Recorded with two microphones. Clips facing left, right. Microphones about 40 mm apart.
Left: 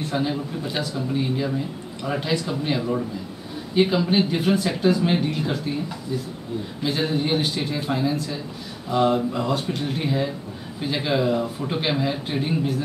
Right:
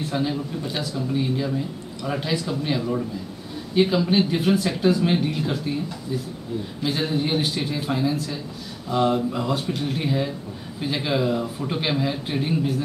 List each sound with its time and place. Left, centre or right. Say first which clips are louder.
0.1 s a man's voice: left 1 dB; centre
6.8 s speech: left 1 dB; centre